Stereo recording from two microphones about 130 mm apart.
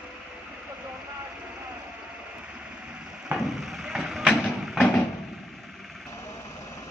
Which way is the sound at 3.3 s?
5° right (ahead or behind).